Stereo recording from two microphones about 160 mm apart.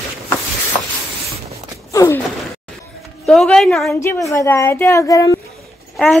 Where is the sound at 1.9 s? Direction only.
20° left (ahead or behind).